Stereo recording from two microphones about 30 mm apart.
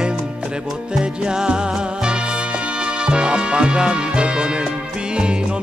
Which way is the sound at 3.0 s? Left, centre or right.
Right.